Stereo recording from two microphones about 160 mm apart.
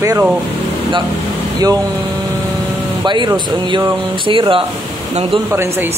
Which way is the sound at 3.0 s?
30° right (ahead or behind).